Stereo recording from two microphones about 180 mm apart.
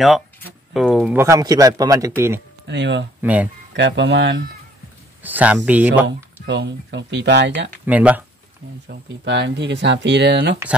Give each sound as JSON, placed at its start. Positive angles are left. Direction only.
{"t": 0.7, "sound": "speech", "side_deg": 0}
{"t": 1.1, "sound": "a man's voice", "side_deg": -15}
{"t": 2.6, "sound": "speech", "side_deg": -75}
{"t": 3.2, "sound": "speech", "side_deg": -10}
{"t": 3.7, "sound": "speech", "side_deg": -80}
{"t": 5.2, "sound": "a man's voice", "side_deg": -10}
{"t": 6.4, "sound": "speech", "side_deg": -75}
{"t": 7.8, "sound": "a man's voice", "side_deg": -10}
{"t": 8.8, "sound": "speech", "side_deg": -70}